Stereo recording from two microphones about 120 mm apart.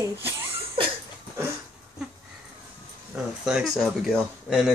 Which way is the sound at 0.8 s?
45° right (ahead or behind).